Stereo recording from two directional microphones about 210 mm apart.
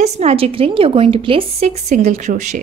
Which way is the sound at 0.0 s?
30° right (ahead or behind).